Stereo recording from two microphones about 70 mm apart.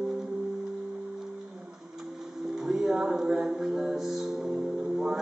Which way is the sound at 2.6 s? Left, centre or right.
Centre.